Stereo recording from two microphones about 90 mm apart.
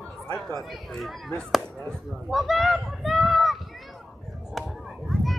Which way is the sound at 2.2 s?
Centre (ahead or behind).